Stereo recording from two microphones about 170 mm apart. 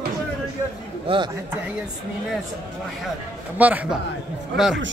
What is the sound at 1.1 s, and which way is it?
Speech, 35° right (ahead or behind).